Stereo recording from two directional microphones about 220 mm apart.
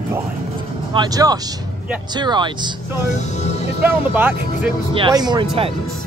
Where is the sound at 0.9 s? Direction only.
20° right (ahead or behind).